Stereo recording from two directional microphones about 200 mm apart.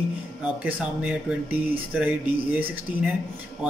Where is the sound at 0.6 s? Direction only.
10° right (ahead or behind).